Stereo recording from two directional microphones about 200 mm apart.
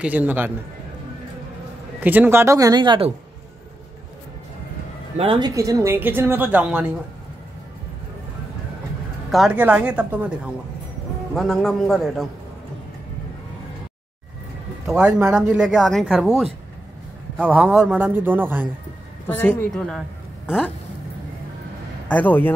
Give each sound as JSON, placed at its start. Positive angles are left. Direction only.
{"t": 0.0, "sound": "a woman's voice", "side_deg": -10}
{"t": 2.0, "sound": "a woman's voice", "side_deg": -10}
{"t": 5.1, "sound": "speech", "side_deg": -30}
{"t": 5.5, "sound": "a woman's voice", "side_deg": -15}
{"t": 9.3, "sound": "a woman's voice", "side_deg": -5}
{"t": 15.0, "sound": "speech", "side_deg": -10}
{"t": 17.5, "sound": "a woman's voice", "side_deg": -5}
{"t": 19.2, "sound": "a woman's voice", "side_deg": 10}
{"t": 22.0, "sound": "speech", "side_deg": 10}